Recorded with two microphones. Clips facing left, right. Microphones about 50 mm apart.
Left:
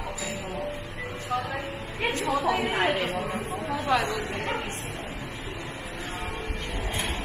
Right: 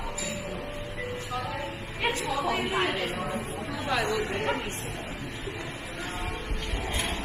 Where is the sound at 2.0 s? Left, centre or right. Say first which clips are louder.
Left 2 dB; left.